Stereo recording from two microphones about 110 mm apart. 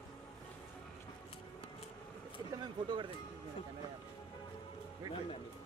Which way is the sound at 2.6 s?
45° right (ahead or behind).